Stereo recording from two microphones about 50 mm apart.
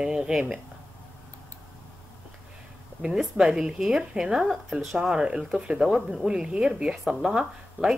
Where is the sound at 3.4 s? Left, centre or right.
Centre.